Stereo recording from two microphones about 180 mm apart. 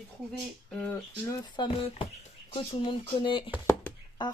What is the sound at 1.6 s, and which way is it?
Speech, 30° left (ahead or behind).